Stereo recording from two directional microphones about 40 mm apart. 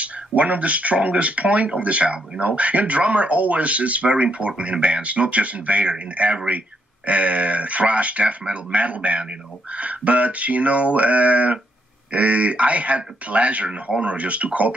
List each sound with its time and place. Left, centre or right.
0.4 s speech: right